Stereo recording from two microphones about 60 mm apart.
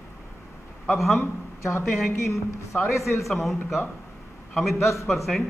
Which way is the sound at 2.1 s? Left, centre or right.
Left.